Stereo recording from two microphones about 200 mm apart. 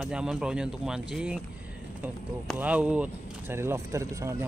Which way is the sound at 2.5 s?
5° right (ahead or behind).